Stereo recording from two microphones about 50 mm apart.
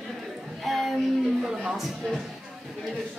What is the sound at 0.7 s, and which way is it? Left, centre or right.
Music, centre.